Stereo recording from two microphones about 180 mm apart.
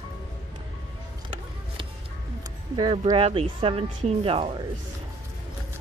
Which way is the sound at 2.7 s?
30° right (ahead or behind).